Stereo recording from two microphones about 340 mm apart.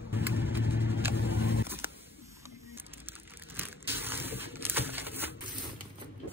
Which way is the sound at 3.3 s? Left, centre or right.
Centre.